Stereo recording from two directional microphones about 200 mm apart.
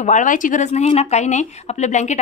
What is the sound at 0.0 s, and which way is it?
Speech, 40° left (ahead or behind).